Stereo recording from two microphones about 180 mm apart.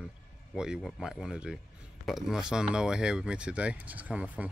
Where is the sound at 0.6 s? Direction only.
Centre (ahead or behind).